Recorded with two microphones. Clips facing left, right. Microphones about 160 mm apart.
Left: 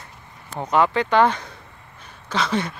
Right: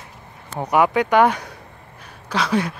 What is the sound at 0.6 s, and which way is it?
Speech, 15° right (ahead or behind).